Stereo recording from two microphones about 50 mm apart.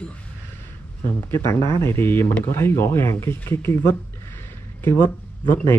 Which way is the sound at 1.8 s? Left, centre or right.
Left.